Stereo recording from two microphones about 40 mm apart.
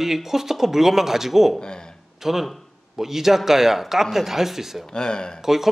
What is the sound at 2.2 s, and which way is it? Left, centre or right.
Speech, centre.